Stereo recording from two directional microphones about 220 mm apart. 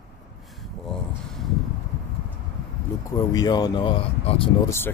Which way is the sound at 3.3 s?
20° left (ahead or behind).